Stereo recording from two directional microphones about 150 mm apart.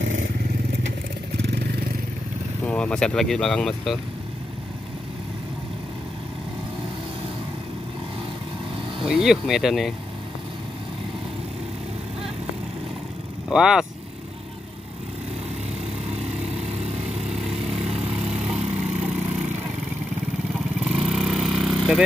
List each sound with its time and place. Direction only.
2.6 s speech: 5° left (ahead or behind)
9.0 s speech: 5° right (ahead or behind)
13.5 s speech: 5° right (ahead or behind)
16.2 s lawn mower: 45° right (ahead or behind)
17.3 s lawn mower: centre (ahead or behind)
18.8 s splinter: 5° right (ahead or behind)
20.8 s vehicle: centre (ahead or behind)